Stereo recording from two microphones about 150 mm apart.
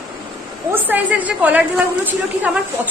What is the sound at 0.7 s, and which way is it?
A woman's voice, 10° right (ahead or behind).